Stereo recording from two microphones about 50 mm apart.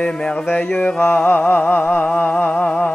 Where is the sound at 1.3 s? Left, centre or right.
Left.